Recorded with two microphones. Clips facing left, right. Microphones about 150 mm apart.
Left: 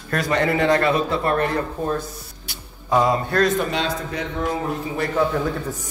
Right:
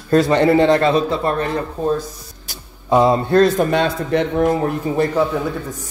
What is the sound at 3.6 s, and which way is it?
Speech, 55° right (ahead or behind).